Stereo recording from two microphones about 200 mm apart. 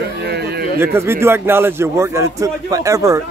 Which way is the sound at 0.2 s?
55° right (ahead or behind).